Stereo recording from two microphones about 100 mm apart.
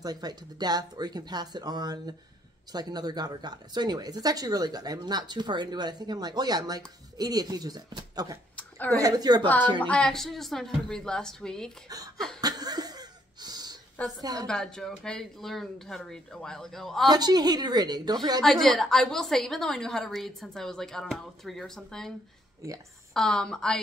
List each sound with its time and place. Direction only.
0.0 s speech: 40° right (ahead or behind)
8.5 s a sound: 15° left (ahead or behind)
8.9 s speech: 40° right (ahead or behind)
9.4 s a woman's voice: 15° left (ahead or behind)
12.4 s cough: 40° right (ahead or behind)
14.2 s speech: 40° right (ahead or behind)
14.5 s a woman's voice: 5° left (ahead or behind)
17.1 s speech: 45° right (ahead or behind)
18.4 s a woman's voice: 5° left (ahead or behind)
23.1 s a woman's voice: 5° left (ahead or behind)